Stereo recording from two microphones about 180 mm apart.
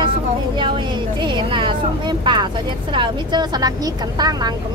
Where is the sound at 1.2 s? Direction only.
25° right (ahead or behind).